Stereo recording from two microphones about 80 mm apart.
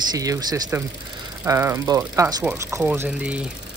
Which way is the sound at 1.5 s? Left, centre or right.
Right.